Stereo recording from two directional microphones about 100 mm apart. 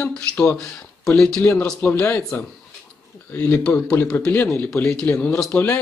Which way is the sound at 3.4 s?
20° left (ahead or behind).